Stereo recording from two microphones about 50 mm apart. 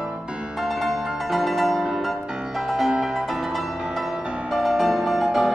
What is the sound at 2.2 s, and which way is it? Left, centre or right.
Music, centre.